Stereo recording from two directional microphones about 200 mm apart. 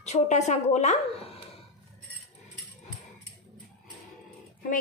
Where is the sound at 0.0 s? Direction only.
35° left (ahead or behind).